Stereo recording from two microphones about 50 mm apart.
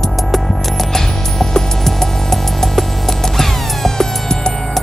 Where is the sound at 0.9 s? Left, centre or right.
Centre.